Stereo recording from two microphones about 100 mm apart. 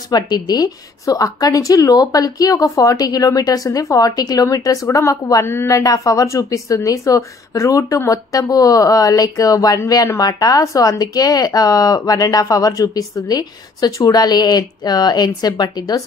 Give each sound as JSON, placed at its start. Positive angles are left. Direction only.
{"t": 0.1, "sound": "a woman's voice", "side_deg": 45}
{"t": 5.8, "sound": "speech", "side_deg": 35}